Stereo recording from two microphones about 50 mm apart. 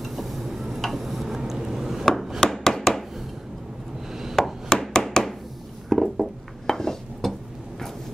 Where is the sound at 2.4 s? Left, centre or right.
Centre.